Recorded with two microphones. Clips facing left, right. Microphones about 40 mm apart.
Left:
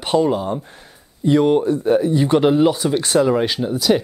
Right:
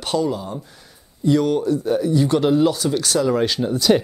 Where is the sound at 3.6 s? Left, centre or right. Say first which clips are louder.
Even; centre.